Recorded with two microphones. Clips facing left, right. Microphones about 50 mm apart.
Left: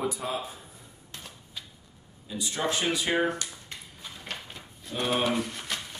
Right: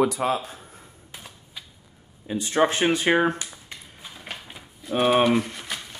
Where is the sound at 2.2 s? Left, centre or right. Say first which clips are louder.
Right 9 dB; right.